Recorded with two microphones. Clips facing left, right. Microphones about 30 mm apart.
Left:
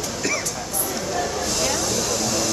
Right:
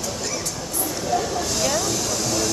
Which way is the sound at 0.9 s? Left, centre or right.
Centre.